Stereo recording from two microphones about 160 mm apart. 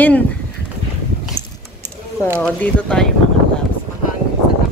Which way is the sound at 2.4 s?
5° left (ahead or behind).